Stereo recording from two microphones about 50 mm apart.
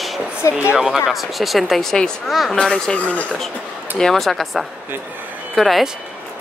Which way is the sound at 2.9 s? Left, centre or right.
Left.